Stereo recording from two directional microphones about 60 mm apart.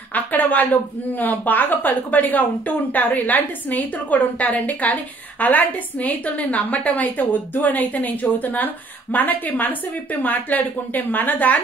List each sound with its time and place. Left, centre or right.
0.1 s speech: left